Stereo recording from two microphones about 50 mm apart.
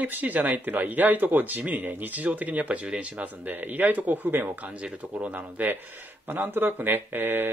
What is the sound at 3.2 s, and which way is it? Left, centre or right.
Speech, right.